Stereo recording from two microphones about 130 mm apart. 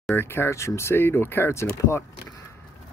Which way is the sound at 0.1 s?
20° left (ahead or behind).